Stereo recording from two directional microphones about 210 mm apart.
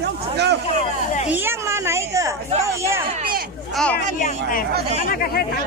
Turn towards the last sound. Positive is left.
turn(degrees=45)  # may be behind; listen again after turning